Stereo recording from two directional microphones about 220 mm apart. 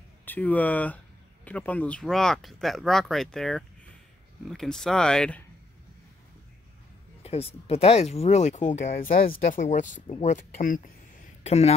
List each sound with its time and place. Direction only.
0.2 s speech: 10° left (ahead or behind)
7.2 s speech: 25° left (ahead or behind)